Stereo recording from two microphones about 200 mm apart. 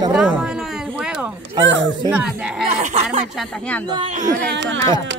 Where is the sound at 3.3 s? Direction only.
Centre (ahead or behind).